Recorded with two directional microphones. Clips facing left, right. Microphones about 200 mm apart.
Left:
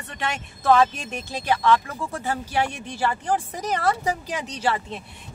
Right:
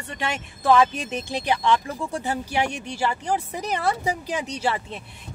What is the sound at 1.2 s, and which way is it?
Speech, 15° right (ahead or behind).